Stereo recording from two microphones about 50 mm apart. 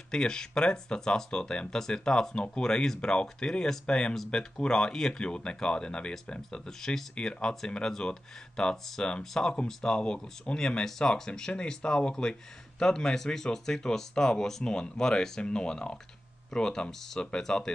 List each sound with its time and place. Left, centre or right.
0.1 s speech: centre